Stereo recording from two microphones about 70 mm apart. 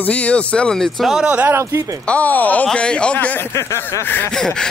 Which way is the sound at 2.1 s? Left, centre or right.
Left.